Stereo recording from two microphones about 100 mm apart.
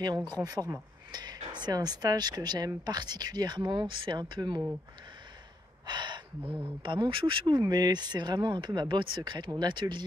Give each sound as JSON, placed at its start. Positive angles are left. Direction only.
{"t": 0.3, "sound": "speech", "side_deg": -40}
{"t": 5.9, "sound": "gasp", "side_deg": -50}
{"t": 6.4, "sound": "speech", "side_deg": -15}
{"t": 6.8, "sound": "speech", "side_deg": -55}